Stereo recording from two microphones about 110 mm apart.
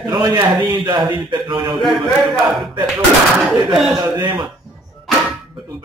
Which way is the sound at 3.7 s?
5° right (ahead or behind).